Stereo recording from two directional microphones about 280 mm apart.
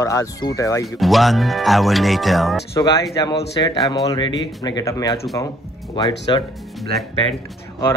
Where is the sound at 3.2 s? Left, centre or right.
Centre.